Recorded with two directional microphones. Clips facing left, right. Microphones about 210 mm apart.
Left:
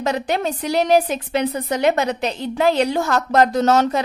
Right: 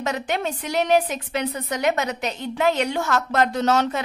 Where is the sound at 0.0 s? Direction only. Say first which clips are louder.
Left 4 dB; 35° left (ahead or behind).